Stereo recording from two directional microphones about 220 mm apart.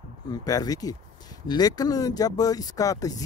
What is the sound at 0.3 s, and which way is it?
Speech, 15° left (ahead or behind).